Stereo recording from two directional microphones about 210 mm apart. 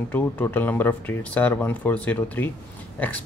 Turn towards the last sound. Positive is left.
turn(degrees=10)  # may be behind; listen again after turning